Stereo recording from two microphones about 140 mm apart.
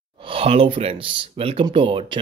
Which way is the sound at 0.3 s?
40° right (ahead or behind).